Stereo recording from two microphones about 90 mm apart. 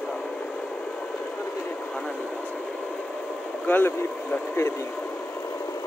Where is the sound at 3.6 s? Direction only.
20° left (ahead or behind).